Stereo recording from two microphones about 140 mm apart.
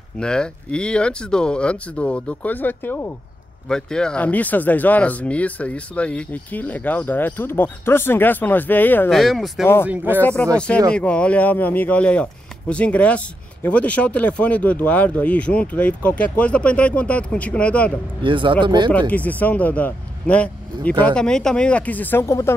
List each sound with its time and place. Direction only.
0.2 s speech: 5° left (ahead or behind)
9.1 s speech: centre (ahead or behind)
9.8 s speech: 10° right (ahead or behind)
10.2 s speech: 10° left (ahead or behind)
18.2 s speech: 35° right (ahead or behind)
18.9 s speech: 10° left (ahead or behind)